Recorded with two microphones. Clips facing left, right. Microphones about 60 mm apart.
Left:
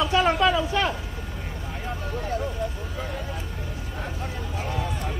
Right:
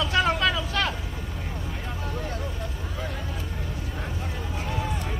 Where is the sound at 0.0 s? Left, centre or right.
Left.